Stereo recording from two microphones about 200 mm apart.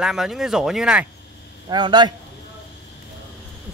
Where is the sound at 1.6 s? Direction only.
20° right (ahead or behind).